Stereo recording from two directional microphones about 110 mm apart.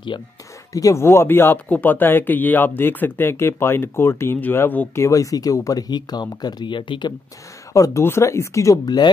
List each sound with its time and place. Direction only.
0.7 s speech: 25° left (ahead or behind); by 7.2 s 45° left (ahead or behind)
7.7 s speech: 30° left (ahead or behind)